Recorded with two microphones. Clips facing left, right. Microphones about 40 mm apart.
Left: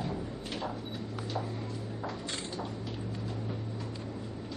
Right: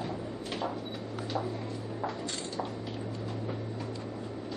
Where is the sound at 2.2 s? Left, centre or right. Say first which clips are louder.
Right 1 dB; centre.